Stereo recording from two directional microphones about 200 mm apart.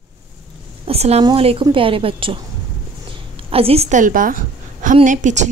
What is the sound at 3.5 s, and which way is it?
A woman's voice, 30° right (ahead or behind).